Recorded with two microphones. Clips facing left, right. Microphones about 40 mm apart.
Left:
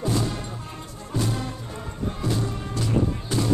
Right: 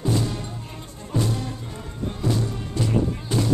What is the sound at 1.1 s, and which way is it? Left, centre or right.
Music, right.